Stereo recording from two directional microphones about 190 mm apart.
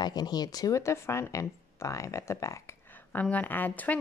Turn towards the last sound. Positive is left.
turn(degrees=10)  # may be behind; listen again after turning